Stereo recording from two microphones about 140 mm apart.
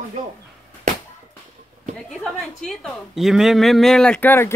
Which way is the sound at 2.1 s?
Centre (ahead or behind).